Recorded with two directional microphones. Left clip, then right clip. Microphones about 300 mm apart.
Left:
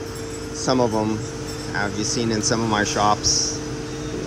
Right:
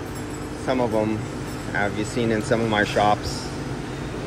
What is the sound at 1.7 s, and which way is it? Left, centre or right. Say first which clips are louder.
Speech: even; centre.